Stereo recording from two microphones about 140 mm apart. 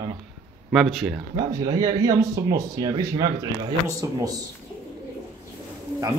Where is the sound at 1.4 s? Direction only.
25° right (ahead or behind).